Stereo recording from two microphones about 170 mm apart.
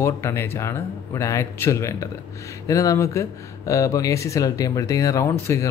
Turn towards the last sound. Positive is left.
turn(degrees=15)  # may be behind; listen again after turning